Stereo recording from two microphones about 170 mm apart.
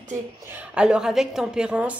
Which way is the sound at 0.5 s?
5° right (ahead or behind).